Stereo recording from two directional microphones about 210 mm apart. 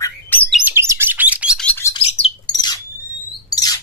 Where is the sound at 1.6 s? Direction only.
10° left (ahead or behind).